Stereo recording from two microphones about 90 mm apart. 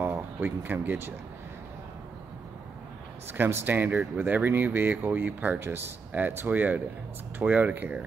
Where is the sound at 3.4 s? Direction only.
25° right (ahead or behind).